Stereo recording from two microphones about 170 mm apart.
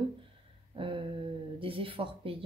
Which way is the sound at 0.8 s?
30° right (ahead or behind).